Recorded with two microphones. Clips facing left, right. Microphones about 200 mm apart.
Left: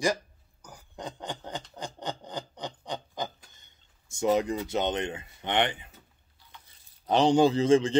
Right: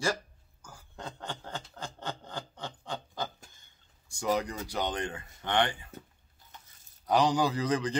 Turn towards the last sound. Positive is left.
turn(degrees=25)  # may be behind; listen again after turning